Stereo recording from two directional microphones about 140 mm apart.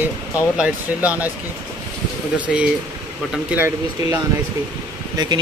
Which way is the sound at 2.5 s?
5° right (ahead or behind).